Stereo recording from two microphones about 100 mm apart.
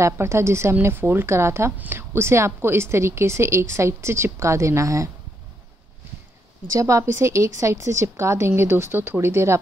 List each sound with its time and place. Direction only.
0.0 s a woman's voice: 25° right (ahead or behind)
6.7 s a woman's voice: 30° right (ahead or behind)